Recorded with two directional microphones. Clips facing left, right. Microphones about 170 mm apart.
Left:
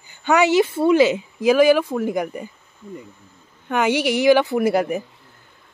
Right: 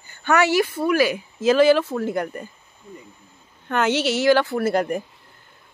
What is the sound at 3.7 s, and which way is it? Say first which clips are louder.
Speech: left 2 dB; 10° left (ahead or behind).